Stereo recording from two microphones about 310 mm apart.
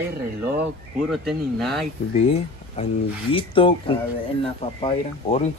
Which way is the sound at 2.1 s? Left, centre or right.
Centre.